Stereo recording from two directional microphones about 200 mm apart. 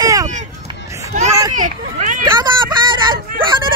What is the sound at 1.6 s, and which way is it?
Speech, 40° right (ahead or behind).